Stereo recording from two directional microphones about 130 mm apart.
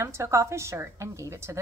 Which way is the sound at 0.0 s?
20° right (ahead or behind).